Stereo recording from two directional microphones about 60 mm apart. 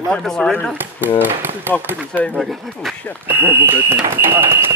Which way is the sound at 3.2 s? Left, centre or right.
Right.